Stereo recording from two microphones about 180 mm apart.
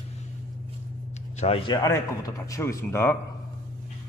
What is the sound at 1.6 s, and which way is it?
Speech, 20° left (ahead or behind).